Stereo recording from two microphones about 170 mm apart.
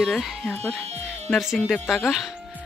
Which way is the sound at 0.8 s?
40° right (ahead or behind).